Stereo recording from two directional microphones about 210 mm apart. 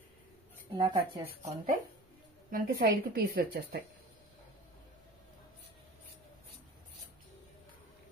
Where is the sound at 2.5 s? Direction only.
45° right (ahead or behind).